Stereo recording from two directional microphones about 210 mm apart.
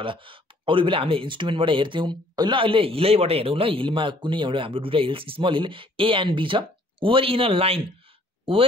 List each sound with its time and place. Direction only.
0.0 s speech: 25° right (ahead or behind)